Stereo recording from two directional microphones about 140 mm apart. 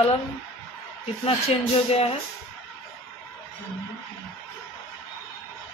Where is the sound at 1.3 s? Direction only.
45° left (ahead or behind).